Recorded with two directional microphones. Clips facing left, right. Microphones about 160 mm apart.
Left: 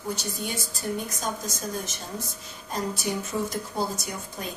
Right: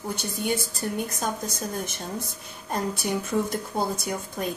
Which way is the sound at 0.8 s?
55° right (ahead or behind).